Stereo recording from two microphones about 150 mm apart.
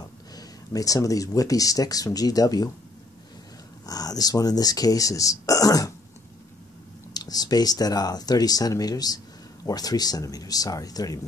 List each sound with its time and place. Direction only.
0.4 s speech: 25° left (ahead or behind)
3.8 s speech: 25° left (ahead or behind)
7.2 s speech: 25° left (ahead or behind)